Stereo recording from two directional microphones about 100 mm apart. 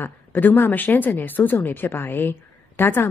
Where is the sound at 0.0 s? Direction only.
20° left (ahead or behind).